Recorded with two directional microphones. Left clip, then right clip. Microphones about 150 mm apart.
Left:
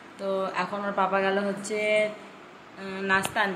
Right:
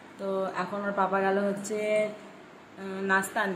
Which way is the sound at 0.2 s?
15° right (ahead or behind).